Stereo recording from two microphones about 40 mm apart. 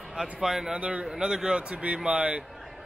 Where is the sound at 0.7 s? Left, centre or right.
Right.